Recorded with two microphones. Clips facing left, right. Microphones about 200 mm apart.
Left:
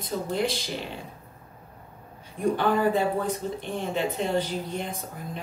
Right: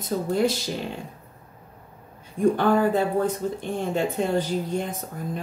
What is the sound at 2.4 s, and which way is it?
Speech, 45° right (ahead or behind).